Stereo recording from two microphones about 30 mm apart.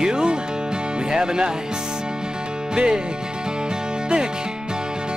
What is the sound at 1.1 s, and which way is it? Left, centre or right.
Music, right.